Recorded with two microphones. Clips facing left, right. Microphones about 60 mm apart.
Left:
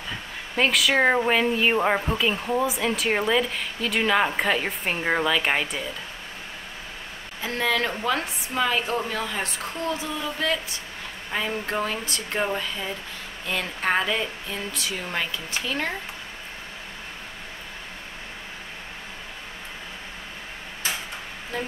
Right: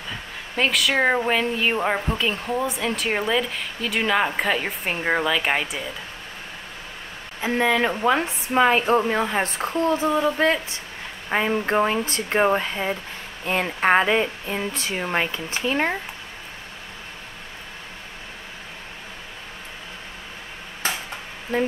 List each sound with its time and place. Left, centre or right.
0.6 s speech: centre
7.4 s a woman's voice: centre
8.5 s speech: right
21.5 s speech: right